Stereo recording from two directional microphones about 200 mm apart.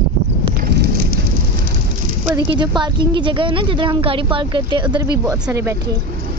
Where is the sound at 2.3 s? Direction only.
20° right (ahead or behind).